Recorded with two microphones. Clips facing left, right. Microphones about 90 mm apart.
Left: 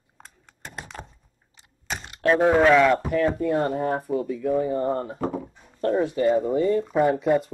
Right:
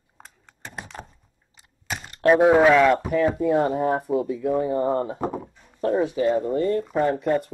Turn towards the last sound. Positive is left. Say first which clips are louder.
# left 1 dB
turn(degrees=10)  # may be behind; listen again after turning